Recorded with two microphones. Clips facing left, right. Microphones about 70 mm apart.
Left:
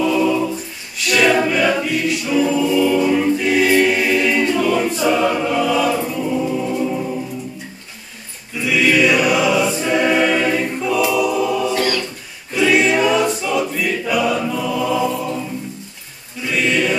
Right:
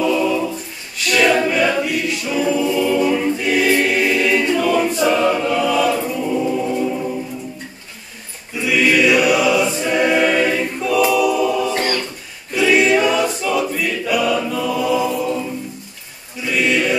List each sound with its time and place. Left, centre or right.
0.0 s a capella: centre
1.0 s choir: centre
8.5 s choir: centre
11.7 s a capella: right
12.5 s choir: centre
14.3 s chant: centre
16.4 s chant: centre